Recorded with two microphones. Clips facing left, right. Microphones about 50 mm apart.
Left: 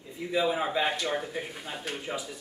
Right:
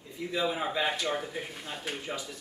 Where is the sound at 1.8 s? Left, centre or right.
Centre.